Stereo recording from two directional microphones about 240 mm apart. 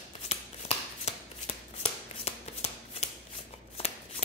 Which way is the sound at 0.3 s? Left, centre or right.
Left.